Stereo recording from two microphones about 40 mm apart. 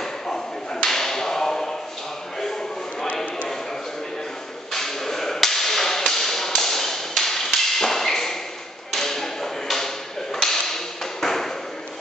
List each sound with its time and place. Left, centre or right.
0.8 s a sound: centre
4.7 s whip: centre
8.9 s tap: centre